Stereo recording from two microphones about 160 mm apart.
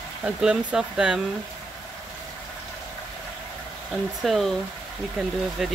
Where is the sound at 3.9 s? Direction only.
Centre (ahead or behind).